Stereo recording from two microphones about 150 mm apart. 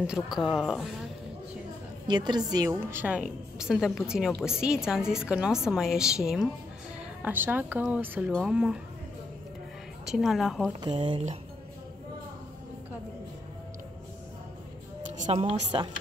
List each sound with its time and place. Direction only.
0.0 s a woman's voice: 5° right (ahead or behind)
2.0 s a woman's voice: 30° right (ahead or behind)
3.0 s a woman's voice: 5° right (ahead or behind)
10.0 s a woman's voice: centre (ahead or behind)
10.8 s speech: 30° right (ahead or behind)
15.3 s speech: 40° right (ahead or behind)